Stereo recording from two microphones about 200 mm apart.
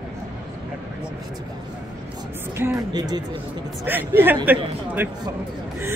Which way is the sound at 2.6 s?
15° right (ahead or behind).